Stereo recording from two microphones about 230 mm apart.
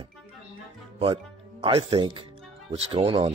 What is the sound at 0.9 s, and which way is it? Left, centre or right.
Speech, right.